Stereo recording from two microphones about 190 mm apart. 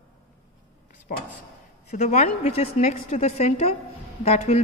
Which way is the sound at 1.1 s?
50° left (ahead or behind).